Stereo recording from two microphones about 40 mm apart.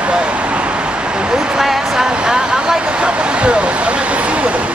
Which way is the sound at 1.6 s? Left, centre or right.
Centre.